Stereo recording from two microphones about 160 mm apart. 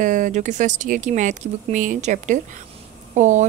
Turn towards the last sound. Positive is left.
turn(degrees=-50)  # may be behind; listen again after turning